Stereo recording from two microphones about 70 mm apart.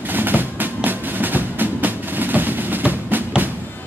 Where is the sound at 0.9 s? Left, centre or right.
Right.